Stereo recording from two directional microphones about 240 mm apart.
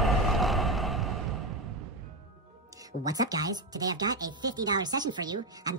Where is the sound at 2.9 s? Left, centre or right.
Centre.